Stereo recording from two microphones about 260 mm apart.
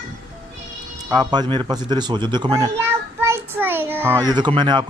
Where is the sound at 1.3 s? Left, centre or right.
Centre.